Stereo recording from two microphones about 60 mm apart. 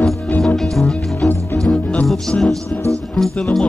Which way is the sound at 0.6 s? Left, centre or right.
Centre.